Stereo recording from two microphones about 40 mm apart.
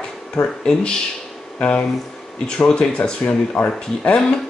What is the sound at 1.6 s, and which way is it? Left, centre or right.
Speech, left.